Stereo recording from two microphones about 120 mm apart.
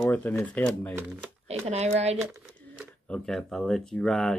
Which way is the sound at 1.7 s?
65° right (ahead or behind).